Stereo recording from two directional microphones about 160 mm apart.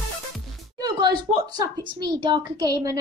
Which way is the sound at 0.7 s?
25° right (ahead or behind).